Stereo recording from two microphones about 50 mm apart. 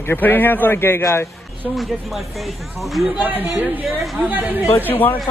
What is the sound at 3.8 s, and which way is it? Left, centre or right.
Speech, centre.